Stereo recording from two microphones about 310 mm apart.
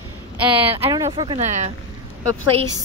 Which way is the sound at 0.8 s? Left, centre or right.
Centre.